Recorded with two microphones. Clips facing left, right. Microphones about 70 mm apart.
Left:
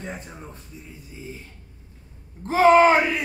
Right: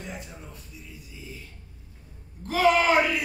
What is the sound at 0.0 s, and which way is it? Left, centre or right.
A man's voice, left.